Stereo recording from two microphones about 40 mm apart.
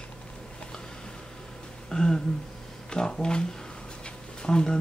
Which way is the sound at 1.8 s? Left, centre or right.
Centre.